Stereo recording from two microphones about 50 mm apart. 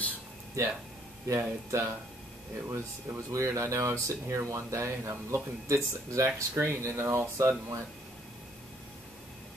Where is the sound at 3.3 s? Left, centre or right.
Right.